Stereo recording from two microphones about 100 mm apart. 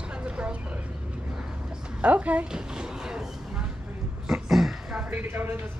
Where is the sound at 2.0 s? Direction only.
15° right (ahead or behind).